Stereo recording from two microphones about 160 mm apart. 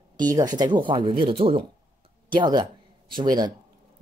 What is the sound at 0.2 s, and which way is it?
Speech, 20° right (ahead or behind).